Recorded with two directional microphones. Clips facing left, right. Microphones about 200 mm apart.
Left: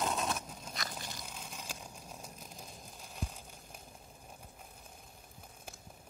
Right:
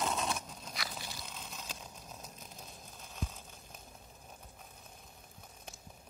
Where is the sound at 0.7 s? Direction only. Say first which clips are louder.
Even; 5° right (ahead or behind).